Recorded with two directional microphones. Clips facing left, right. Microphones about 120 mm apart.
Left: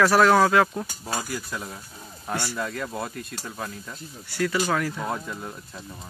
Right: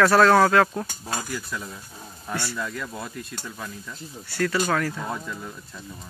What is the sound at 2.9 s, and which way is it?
Speech, 30° left (ahead or behind).